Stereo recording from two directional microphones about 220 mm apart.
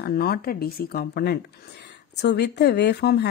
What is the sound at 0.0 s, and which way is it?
Speech, 45° left (ahead or behind).